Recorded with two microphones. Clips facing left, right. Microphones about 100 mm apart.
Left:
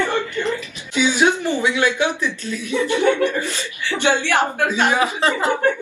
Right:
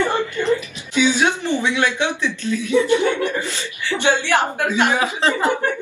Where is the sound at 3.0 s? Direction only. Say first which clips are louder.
Left 2 dB; 20° right (ahead or behind).